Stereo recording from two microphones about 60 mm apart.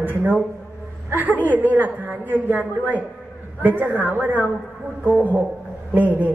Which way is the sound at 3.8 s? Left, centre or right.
Right.